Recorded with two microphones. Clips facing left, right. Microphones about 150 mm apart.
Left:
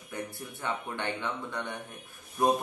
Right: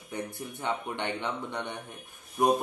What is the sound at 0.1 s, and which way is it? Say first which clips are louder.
Speech: right 2 dB; 20° right (ahead or behind).